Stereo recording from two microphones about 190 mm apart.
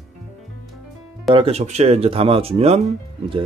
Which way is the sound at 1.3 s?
30° right (ahead or behind).